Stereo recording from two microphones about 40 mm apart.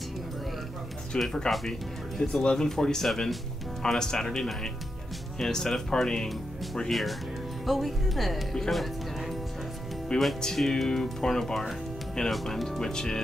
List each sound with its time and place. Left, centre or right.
1.1 s speech: left; by 3.3 s centre
3.8 s speech: centre
6.2 s speech: centre